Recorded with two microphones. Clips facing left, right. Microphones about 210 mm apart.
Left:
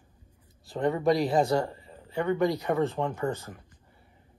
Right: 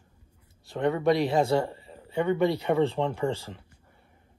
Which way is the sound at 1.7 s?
25° right (ahead or behind).